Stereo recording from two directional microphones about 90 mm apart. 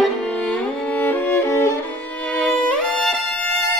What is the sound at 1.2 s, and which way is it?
Music, 30° left (ahead or behind).